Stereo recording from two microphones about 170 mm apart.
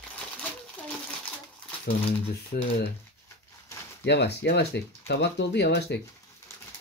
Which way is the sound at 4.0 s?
80° left.